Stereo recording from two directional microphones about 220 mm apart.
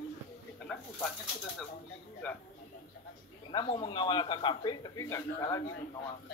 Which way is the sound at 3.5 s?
25° left (ahead or behind).